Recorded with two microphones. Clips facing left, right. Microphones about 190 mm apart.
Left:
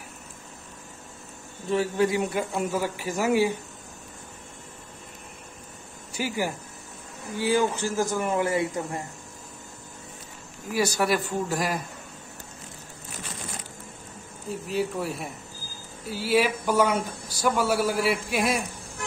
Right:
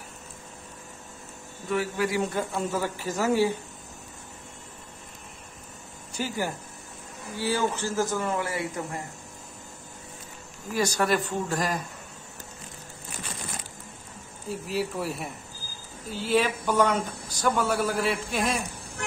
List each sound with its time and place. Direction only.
1.7 s speech: 25° left (ahead or behind)
2.2 s speech: 10° left (ahead or behind)
6.1 s speech: 10° left (ahead or behind)
11.0 s speech: 10° left (ahead or behind)
14.5 s speech: centre (ahead or behind)